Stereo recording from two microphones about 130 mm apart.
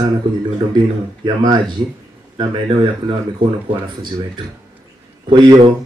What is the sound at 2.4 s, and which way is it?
Speech, 40° right (ahead or behind).